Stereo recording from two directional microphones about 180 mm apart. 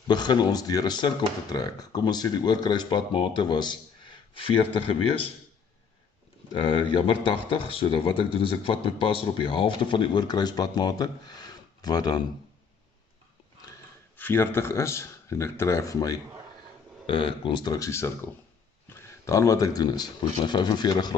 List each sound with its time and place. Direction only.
0.1 s speech: 25° left (ahead or behind)
6.5 s speech: 30° left (ahead or behind)
14.1 s speech: 10° left (ahead or behind)